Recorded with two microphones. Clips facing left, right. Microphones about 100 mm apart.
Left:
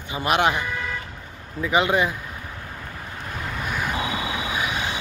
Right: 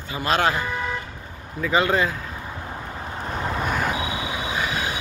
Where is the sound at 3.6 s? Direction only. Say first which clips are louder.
Right 2 dB; 40° right (ahead or behind).